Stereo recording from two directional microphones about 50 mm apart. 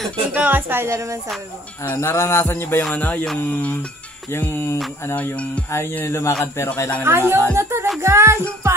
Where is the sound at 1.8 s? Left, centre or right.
Left.